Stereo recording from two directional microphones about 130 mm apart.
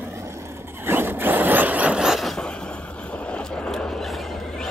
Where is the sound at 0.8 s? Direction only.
15° right (ahead or behind).